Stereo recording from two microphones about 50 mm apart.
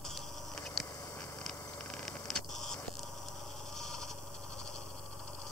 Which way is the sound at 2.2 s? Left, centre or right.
Centre.